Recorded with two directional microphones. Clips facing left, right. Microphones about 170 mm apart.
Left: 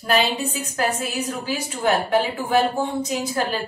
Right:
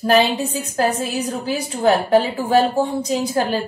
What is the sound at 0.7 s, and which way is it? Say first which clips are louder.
A woman's voice: right 5 dB; 35° right (ahead or behind).